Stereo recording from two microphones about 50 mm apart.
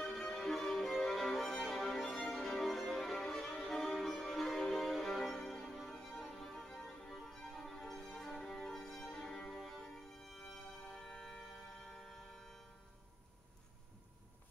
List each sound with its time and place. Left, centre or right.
0.0 s music: centre